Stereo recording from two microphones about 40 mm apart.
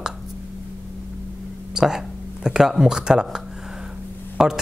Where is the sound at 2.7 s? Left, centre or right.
Centre.